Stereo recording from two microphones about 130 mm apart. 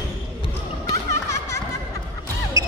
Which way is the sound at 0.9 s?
25° left (ahead or behind).